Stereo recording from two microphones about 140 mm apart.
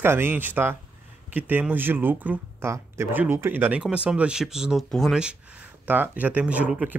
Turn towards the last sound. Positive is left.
turn(degrees=-10)  # may be behind; listen again after turning